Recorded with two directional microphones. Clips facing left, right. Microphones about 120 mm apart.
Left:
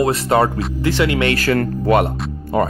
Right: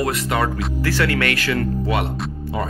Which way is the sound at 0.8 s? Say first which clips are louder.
Left 4 dB; 20° left (ahead or behind).